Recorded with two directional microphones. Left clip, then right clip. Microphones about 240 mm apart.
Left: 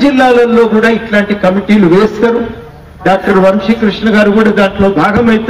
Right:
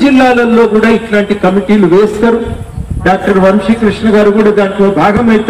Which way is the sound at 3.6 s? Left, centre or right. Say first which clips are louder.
Right 1 dB; left.